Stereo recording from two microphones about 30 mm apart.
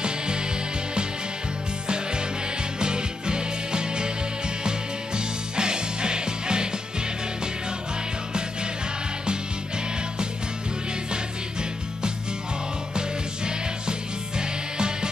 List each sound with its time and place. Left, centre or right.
0.0 s music: right
2.8 s music: right
12.9 s music: right